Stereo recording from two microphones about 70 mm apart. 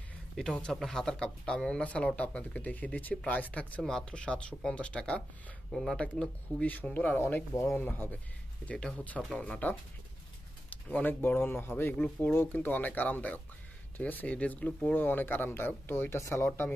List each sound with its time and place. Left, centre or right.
0.4 s speech: centre
3.8 s speech: centre
5.7 s speech: centre
6.7 s speech: left
8.6 s speech: centre; by 16.6 s left